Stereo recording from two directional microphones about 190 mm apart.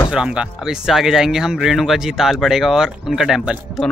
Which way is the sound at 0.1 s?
5° right (ahead or behind).